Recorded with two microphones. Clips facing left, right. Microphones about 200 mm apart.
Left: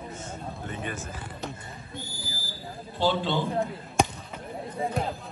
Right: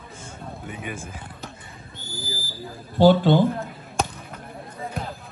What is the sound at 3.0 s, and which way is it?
Speech, 55° right (ahead or behind).